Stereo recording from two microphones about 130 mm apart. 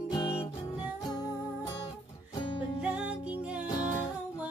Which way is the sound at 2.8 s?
10° right (ahead or behind).